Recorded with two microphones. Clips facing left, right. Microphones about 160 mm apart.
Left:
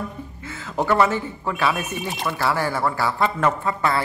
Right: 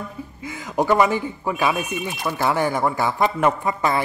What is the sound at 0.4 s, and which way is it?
A man's voice, 15° right (ahead or behind).